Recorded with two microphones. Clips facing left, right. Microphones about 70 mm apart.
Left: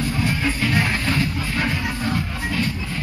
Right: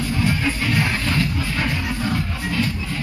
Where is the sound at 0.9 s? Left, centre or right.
Centre.